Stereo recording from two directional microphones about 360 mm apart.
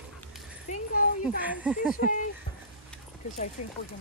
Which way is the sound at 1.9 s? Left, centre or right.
Left.